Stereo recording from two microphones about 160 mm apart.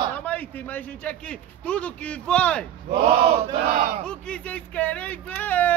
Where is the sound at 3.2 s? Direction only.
40° right (ahead or behind).